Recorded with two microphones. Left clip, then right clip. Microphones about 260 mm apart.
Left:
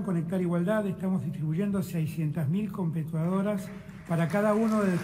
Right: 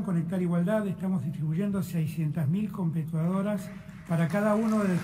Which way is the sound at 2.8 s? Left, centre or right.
Right.